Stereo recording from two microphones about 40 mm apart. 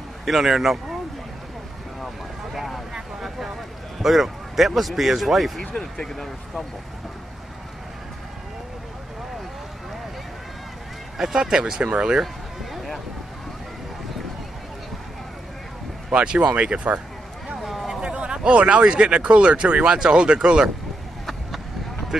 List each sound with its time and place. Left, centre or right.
0.2 s speech: centre
2.5 s vehicle: centre
4.0 s speech: centre
11.1 s speech: centre
12.7 s vehicle: centre
16.1 s speech: right
17.6 s a sound: centre
18.0 s speech: right